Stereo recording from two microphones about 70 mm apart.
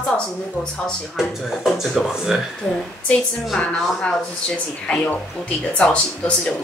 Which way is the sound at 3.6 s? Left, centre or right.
Centre.